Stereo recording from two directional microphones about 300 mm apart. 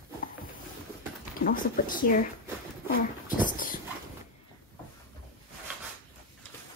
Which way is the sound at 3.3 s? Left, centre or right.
Left.